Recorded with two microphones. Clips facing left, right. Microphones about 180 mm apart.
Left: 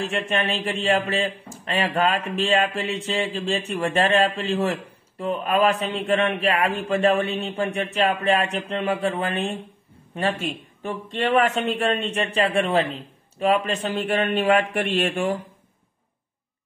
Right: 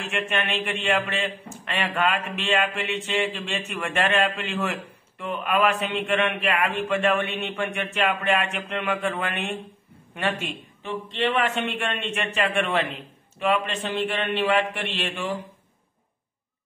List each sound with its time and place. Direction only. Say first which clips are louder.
0.0 s a man's voice: left 3 dB; 35° left (ahead or behind)